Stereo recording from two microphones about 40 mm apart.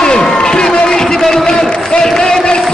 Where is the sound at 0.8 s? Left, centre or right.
Centre.